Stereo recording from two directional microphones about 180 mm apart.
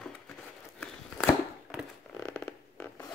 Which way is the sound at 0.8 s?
5° left (ahead or behind).